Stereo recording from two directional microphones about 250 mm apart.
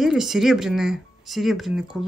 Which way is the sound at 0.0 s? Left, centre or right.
Centre.